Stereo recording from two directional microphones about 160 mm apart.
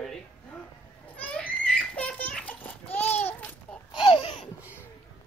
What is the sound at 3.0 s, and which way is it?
Babbling, 40° left (ahead or behind).